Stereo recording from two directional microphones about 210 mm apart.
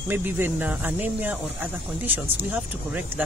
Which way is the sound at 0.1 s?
10° right (ahead or behind).